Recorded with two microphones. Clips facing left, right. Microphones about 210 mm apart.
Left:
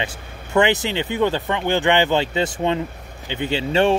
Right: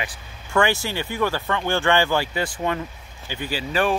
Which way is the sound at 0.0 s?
20° left (ahead or behind).